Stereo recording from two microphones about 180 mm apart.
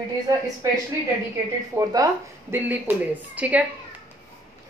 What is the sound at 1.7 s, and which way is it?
Speech, 15° right (ahead or behind).